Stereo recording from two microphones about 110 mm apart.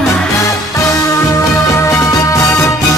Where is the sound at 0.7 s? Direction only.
30° left (ahead or behind).